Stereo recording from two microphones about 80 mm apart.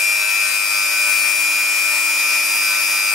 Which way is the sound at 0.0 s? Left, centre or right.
Centre.